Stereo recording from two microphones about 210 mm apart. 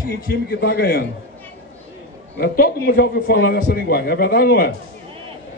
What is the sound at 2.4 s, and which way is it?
A man's voice, 45° left (ahead or behind).